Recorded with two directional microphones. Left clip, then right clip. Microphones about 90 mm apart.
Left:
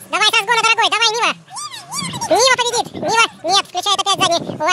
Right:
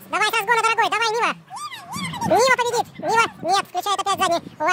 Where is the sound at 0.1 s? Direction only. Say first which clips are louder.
Left 5 dB; 5° right (ahead or behind).